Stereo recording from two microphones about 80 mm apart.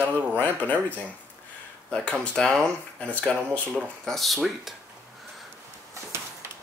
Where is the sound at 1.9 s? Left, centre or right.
Centre.